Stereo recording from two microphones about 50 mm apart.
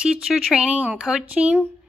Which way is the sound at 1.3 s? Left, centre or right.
Right.